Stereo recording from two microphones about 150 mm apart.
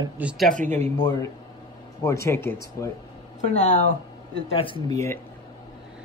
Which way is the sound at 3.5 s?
50° left (ahead or behind).